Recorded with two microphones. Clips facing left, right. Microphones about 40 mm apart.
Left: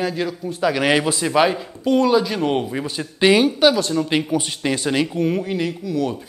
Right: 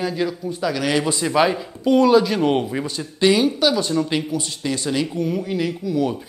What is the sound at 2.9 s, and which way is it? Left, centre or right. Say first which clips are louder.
Speech: left 2 dB; centre.